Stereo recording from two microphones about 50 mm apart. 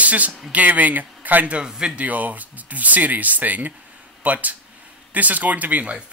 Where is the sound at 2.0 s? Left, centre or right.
Right.